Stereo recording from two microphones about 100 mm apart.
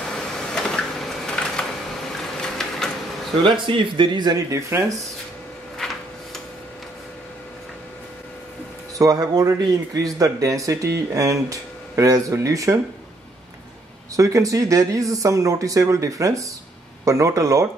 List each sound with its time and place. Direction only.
0.5 s a sound: 5° left (ahead or behind)
2.4 s printer: 5° left (ahead or behind)
3.4 s speech: 55° right (ahead or behind)
4.5 s speech: 30° right (ahead or behind)
5.8 s a sound: 5° left (ahead or behind)
8.9 s speech: 35° right (ahead or behind)
14.1 s speech: 35° right (ahead or behind)